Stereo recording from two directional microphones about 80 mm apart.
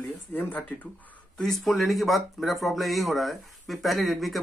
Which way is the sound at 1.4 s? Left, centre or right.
Centre.